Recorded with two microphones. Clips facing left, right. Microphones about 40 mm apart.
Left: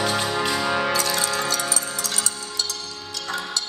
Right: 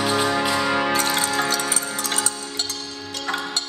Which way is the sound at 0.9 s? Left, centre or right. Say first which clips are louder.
Right 2 dB; right.